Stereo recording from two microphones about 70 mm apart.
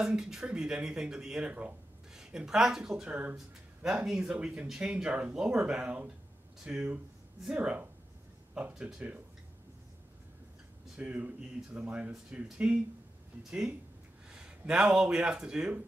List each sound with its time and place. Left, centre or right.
0.0 s speech: centre
2.1 s speech: centre
3.1 s speech: centre
6.6 s speech: centre
7.5 s speech: right
8.6 s speech: centre
11.0 s speech: right